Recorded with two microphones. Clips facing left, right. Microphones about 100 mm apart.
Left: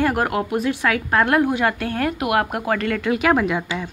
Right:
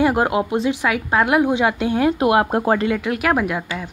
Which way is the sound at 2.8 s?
5° right (ahead or behind).